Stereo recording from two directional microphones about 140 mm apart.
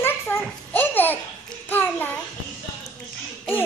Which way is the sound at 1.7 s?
15° left (ahead or behind).